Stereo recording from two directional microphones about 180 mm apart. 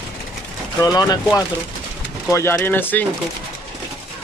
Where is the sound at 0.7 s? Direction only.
20° left (ahead or behind).